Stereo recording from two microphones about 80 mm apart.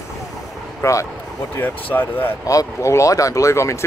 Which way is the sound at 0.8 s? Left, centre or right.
Left.